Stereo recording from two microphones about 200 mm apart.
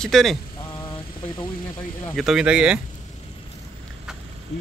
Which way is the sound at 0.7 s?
25° left (ahead or behind).